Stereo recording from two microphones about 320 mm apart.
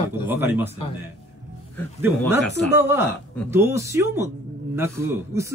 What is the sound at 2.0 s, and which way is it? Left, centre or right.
A man's voice, centre.